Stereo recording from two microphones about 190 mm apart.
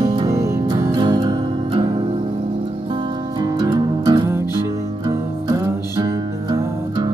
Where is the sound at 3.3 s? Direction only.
20° right (ahead or behind).